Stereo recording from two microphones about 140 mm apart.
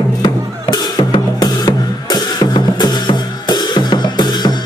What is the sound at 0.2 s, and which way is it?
Drum, 30° left (ahead or behind).